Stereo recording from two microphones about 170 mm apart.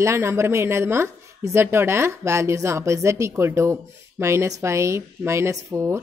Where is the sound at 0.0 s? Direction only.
15° right (ahead or behind).